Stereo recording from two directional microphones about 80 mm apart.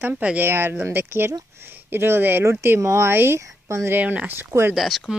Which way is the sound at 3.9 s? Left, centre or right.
Right.